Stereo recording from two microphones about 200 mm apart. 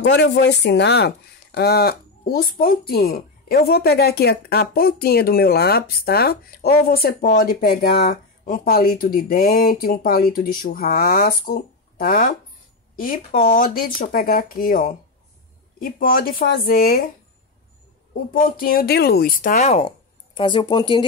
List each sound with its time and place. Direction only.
0.1 s speech: 60° left (ahead or behind)
18.3 s speech: 45° left (ahead or behind)
20.3 s speech: 25° left (ahead or behind)